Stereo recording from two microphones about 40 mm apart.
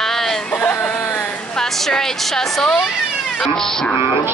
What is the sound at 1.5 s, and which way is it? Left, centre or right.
A woman's voice, centre.